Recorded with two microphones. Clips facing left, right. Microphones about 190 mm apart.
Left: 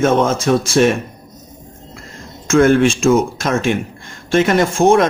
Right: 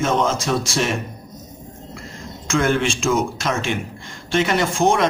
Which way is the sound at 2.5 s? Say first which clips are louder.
Left 8 dB; 50° left (ahead or behind).